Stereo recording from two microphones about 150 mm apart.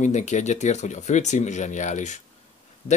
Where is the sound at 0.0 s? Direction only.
50° left (ahead or behind).